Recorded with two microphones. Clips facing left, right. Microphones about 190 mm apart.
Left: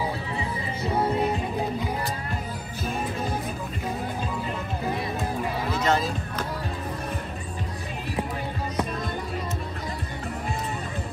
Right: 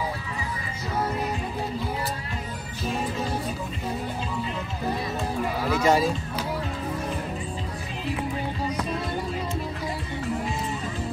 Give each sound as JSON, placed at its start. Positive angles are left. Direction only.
{"t": 0.8, "sound": "music", "side_deg": 30}
{"t": 5.7, "sound": "speech", "side_deg": -10}